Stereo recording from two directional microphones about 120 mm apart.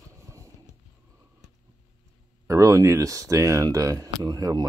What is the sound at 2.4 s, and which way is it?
Speech, 25° right (ahead or behind).